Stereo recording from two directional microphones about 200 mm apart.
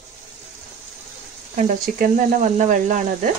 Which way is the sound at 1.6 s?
40° right (ahead or behind).